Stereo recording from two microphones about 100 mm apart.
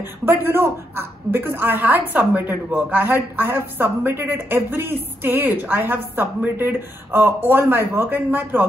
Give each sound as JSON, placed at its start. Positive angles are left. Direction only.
{"t": 0.2, "sound": "a woman's voice", "side_deg": -20}